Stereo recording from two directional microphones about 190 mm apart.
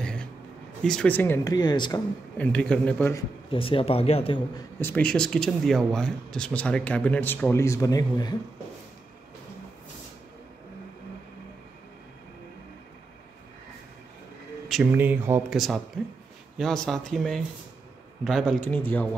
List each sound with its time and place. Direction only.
0.0 s a sound: 5° left (ahead or behind)
0.8 s speech: 5° left (ahead or behind); by 2.0 s 20° left (ahead or behind)
2.3 s speech: 5° left (ahead or behind)
3.2 s speech: 30° left (ahead or behind)
4.6 s speech: 10° left (ahead or behind)
14.7 s speech: 5° right (ahead or behind)
16.5 s speech: centre (ahead or behind)